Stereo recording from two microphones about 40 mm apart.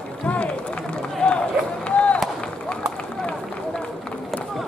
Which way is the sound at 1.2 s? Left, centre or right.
Left.